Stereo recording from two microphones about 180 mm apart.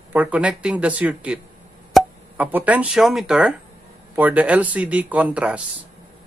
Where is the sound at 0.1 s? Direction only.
10° right (ahead or behind).